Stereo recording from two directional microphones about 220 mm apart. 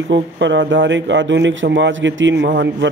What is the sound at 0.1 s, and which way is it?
A man's voice, 55° right (ahead or behind).